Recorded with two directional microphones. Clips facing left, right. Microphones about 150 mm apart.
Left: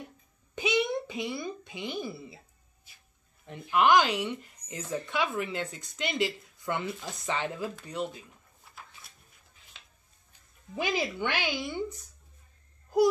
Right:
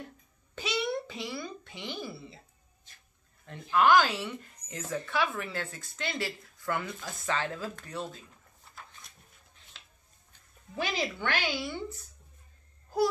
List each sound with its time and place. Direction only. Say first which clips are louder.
0.6 s a child's voice: left 4 dB; 15° left (ahead or behind)
10.7 s speech: left 2 dB; 15° left (ahead or behind)